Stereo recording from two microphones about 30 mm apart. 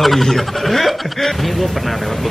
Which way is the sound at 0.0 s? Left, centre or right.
Centre.